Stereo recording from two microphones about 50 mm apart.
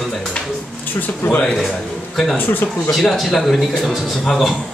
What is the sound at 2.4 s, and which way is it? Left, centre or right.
Speech, left.